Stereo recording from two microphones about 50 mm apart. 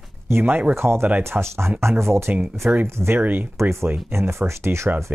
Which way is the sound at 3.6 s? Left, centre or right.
Right.